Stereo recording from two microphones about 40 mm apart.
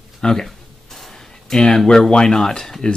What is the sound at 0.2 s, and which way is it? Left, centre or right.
Speech, centre.